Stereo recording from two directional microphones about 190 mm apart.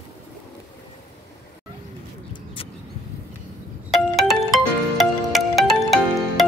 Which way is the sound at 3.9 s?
Centre (ahead or behind).